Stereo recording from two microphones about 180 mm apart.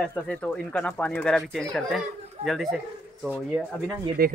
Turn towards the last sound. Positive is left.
turn(degrees=-55)  # may be behind; listen again after turning